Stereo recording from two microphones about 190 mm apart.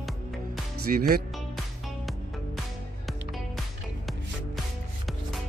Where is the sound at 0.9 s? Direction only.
45° right (ahead or behind).